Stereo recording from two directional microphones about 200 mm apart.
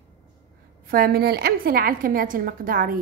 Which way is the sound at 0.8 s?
50° right (ahead or behind).